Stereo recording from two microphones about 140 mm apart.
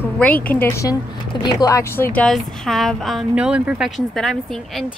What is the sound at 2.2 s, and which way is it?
Speech, 5° left (ahead or behind).